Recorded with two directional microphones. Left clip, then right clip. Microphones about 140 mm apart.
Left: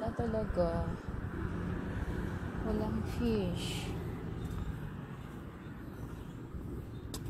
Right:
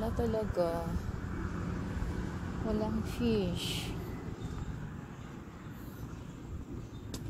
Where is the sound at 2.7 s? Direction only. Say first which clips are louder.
Right 2 dB; 35° right (ahead or behind).